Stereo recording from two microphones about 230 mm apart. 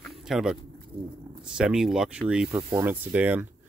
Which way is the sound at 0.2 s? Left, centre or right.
Centre.